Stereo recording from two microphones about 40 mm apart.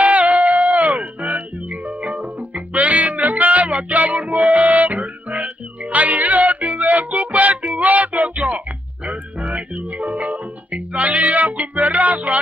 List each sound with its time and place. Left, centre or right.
0.0 s music: right